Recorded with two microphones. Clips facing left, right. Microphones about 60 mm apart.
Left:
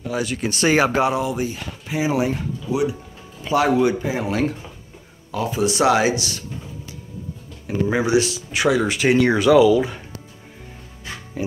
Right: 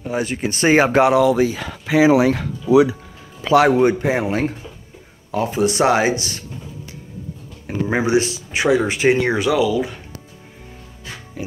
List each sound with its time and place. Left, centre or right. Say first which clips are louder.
0.1 s speech: right 2 dB; right
1.0 s speech: right 7 dB; right
3.6 s a man's voice: right 3 dB; right
4.3 s speech: right 1 dB; right
7.6 s speech: right 1 dB; right
9.3 s speech: left 3 dB; centre
9.6 s speech: left 4 dB; centre